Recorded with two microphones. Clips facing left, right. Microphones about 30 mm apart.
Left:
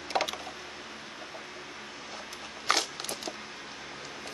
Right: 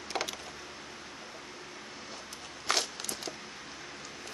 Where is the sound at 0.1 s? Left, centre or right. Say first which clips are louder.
Left 5 dB; centre.